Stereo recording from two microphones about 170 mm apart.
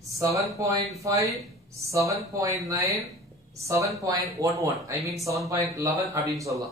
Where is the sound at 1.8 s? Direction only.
20° right (ahead or behind).